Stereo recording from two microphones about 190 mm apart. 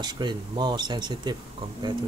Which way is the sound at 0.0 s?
25° right (ahead or behind).